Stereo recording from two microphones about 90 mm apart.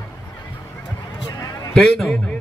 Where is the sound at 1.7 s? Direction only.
5° left (ahead or behind).